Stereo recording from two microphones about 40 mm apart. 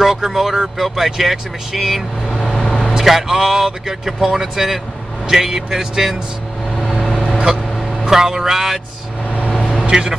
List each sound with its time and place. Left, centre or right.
0.0 s speech: centre
2.4 s vehicle: centre
2.9 s speech: centre
6.9 s vehicle: centre
7.2 s vehicle: right
8.1 s speech: centre
9.8 s vehicle: centre